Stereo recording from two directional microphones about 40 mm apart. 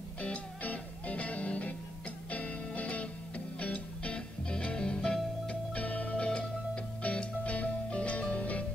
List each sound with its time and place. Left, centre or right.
0.2 s music: left